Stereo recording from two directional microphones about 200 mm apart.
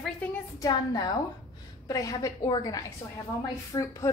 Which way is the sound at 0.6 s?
20° left (ahead or behind).